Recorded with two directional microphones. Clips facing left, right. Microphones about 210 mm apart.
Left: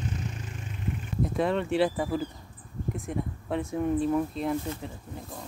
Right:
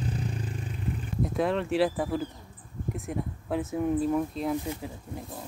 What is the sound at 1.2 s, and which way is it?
Speech, centre (ahead or behind).